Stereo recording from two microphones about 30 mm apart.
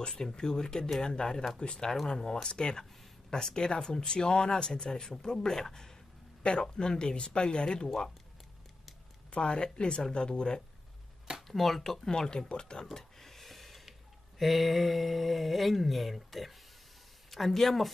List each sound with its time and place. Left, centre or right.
0.1 s speech: centre
9.3 s speech: left
11.4 s speech: centre; by 12.8 s left
12.9 s a sound: centre
14.4 s speech: centre